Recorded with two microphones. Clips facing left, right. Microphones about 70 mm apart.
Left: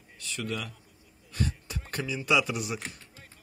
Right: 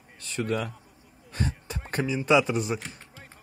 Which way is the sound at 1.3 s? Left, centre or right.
Right.